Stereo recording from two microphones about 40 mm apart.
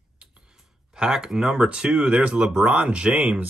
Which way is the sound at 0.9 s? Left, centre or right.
Centre.